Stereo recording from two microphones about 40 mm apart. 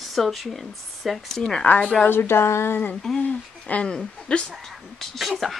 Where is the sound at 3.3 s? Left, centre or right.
Left.